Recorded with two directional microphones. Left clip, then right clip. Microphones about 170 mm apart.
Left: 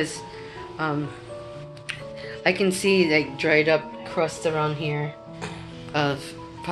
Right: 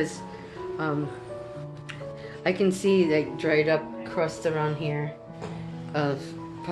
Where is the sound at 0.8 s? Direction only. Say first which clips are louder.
Left 3 dB; 5° left (ahead or behind).